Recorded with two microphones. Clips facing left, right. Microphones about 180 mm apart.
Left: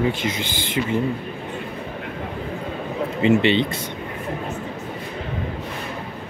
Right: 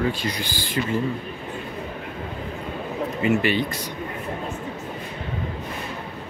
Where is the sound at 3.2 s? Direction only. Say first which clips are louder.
Left 4 dB; 25° left (ahead or behind).